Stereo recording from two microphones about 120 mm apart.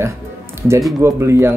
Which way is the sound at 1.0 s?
20° right (ahead or behind).